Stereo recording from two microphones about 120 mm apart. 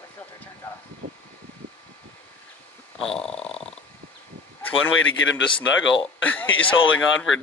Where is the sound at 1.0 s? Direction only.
90° right.